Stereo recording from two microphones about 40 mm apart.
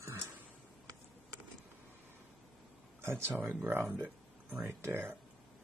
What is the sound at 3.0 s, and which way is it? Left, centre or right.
Speech, right.